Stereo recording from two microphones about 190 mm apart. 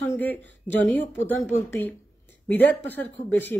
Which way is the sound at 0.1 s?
10° left (ahead or behind).